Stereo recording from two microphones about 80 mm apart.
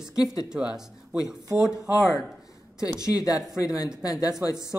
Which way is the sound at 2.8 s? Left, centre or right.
Left.